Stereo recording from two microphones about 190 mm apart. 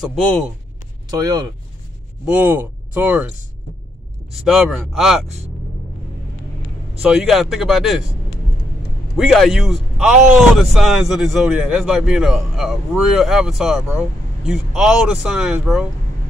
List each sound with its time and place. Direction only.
0.0 s a man's voice: 5° left (ahead or behind)
1.1 s speech: 20° right (ahead or behind)
2.2 s speech: 5° right (ahead or behind)
4.3 s a man's voice: centre (ahead or behind)
7.0 s a man's voice: centre (ahead or behind)
9.1 s a man's voice: centre (ahead or behind)